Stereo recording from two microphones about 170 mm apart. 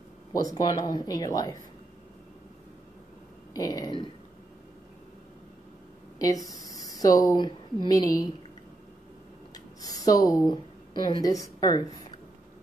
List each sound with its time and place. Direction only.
0.3 s speech: 20° left (ahead or behind)
3.5 s speech: 20° left (ahead or behind)
6.1 s speech: 20° left (ahead or behind)
9.5 s speech: 20° left (ahead or behind)